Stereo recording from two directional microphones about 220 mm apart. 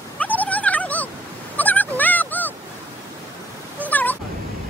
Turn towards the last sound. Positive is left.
turn(degrees=10)  # may be behind; listen again after turning